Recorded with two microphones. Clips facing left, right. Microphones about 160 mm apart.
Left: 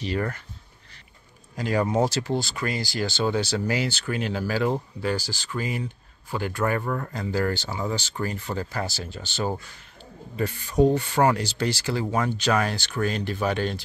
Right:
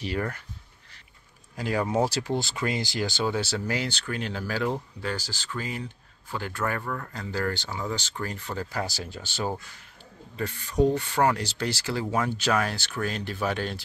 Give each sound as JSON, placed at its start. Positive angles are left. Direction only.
{"t": 0.0, "sound": "speech", "side_deg": -5}
{"t": 1.6, "sound": "speech", "side_deg": -5}
{"t": 6.9, "sound": "speech", "side_deg": 30}
{"t": 7.2, "sound": "speech", "side_deg": 10}
{"t": 8.7, "sound": "speech", "side_deg": -10}
{"t": 10.3, "sound": "speech", "side_deg": 10}